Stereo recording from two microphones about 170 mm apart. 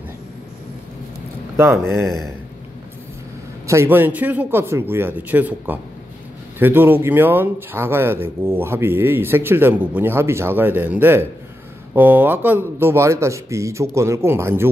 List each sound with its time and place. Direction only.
1.6 s speech: 15° right (ahead or behind)
2.0 s a man's voice: centre (ahead or behind)
3.6 s speech: 15° right (ahead or behind)